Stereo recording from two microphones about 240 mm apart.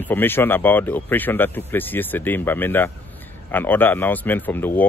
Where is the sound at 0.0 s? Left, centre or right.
Centre.